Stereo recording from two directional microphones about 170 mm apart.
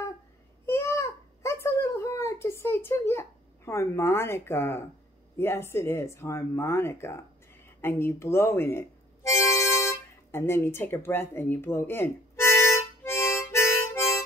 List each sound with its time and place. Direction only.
0.7 s a sound: 15° left (ahead or behind)
5.4 s speech: 15° left (ahead or behind)
7.8 s music: 15° left (ahead or behind)